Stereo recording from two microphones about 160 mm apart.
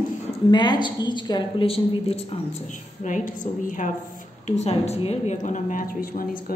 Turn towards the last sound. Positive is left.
turn(degrees=60)  # may be behind; listen again after turning